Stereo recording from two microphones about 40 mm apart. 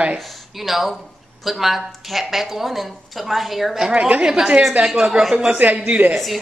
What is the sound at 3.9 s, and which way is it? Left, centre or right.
Speech, right.